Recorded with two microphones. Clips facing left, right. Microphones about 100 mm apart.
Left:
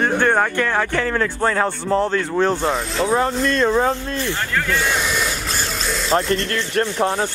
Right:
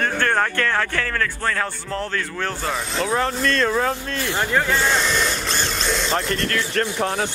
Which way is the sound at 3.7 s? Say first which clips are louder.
Left 4 dB; 20° left (ahead or behind).